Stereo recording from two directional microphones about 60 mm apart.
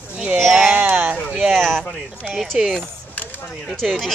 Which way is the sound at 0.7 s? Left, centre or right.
Right.